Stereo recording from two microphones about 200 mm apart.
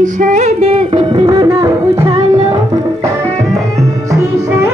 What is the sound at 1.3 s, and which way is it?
Music, 15° right (ahead or behind).